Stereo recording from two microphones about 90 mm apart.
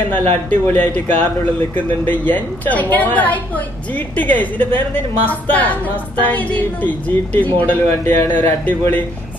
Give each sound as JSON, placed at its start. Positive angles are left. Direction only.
{"t": 0.1, "sound": "a woman's voice", "side_deg": 20}